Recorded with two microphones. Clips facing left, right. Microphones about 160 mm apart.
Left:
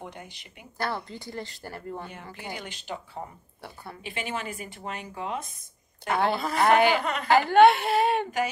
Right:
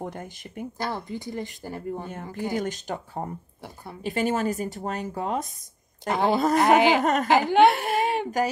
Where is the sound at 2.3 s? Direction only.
45° right (ahead or behind).